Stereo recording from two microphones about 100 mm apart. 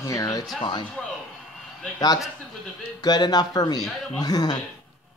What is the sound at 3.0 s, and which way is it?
Speech, 40° left (ahead or behind).